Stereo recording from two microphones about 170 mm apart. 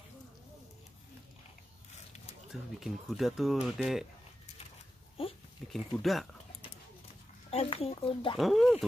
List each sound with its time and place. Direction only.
2.5 s speech: centre (ahead or behind)
5.2 s a sound: 35° left (ahead or behind)
5.7 s speech: centre (ahead or behind)
7.5 s speech: 35° left (ahead or behind)
8.4 s speech: centre (ahead or behind)